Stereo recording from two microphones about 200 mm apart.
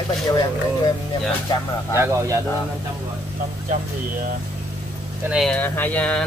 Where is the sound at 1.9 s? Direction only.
15° right (ahead or behind).